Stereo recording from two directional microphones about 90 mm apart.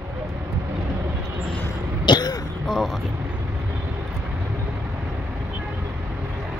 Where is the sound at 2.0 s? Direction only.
50° left (ahead or behind).